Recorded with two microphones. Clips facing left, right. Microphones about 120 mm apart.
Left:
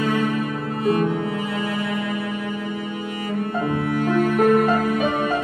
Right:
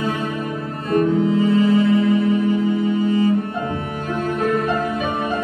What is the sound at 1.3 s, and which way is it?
Music, 25° right (ahead or behind).